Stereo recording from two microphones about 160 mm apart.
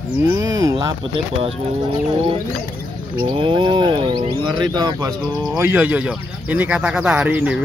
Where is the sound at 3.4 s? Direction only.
30° right (ahead or behind).